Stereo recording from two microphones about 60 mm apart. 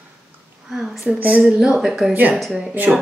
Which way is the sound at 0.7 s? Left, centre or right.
Centre.